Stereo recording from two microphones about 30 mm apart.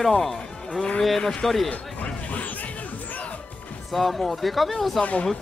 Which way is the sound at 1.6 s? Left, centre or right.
Left.